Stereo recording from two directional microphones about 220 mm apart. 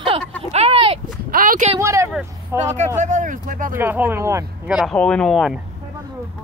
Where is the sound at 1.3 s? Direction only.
40° right (ahead or behind).